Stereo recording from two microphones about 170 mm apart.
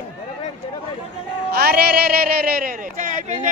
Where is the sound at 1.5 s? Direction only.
65° right (ahead or behind).